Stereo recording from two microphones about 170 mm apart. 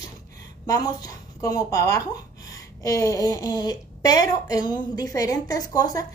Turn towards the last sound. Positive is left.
turn(degrees=20)  # may be behind; listen again after turning